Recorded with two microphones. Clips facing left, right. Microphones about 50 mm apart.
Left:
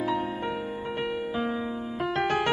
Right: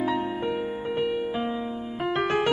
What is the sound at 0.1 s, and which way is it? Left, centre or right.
Music, centre.